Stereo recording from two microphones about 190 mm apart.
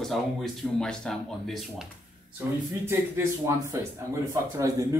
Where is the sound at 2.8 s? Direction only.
15° right (ahead or behind).